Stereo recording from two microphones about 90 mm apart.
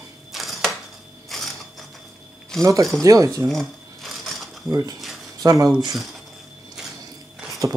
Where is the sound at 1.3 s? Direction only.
Centre (ahead or behind).